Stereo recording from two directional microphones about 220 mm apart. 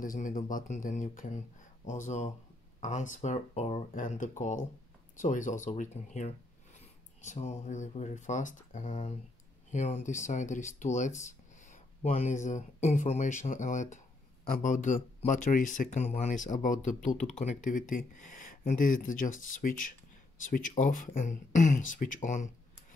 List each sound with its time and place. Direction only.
0.0 s speech: 40° left (ahead or behind)